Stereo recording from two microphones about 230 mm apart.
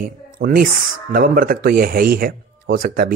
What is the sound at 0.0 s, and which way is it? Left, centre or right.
Speech, right.